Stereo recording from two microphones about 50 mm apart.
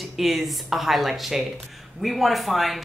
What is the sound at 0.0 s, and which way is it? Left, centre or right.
Speech, centre.